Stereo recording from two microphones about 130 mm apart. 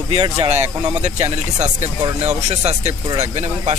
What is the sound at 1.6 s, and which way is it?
Speech, 60° right (ahead or behind).